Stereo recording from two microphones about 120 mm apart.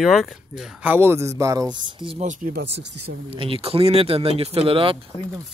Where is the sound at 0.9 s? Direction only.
20° right (ahead or behind).